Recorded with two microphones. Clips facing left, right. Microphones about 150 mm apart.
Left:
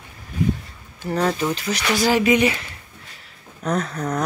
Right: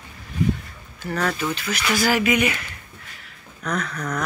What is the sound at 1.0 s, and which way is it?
Speech, 25° left (ahead or behind).